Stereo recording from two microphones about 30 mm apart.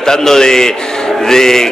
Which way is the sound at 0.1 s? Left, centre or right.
Centre.